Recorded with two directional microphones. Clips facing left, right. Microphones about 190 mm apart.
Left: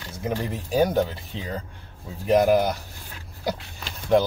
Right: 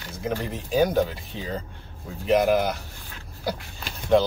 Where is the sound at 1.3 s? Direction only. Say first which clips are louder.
Even; 20° left (ahead or behind).